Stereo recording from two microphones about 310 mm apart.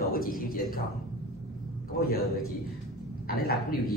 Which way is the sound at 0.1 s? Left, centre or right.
Left.